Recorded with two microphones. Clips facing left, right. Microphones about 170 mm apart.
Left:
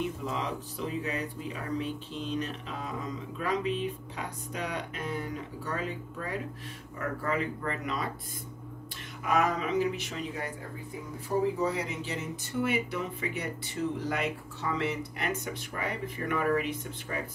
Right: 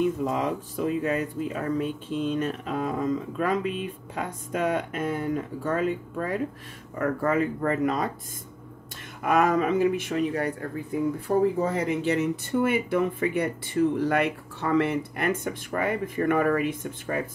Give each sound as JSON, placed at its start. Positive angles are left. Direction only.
{"t": 0.2, "sound": "speech", "side_deg": -45}
{"t": 9.2, "sound": "speech", "side_deg": -55}